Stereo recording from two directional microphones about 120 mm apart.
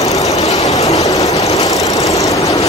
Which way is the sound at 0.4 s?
65° left (ahead or behind).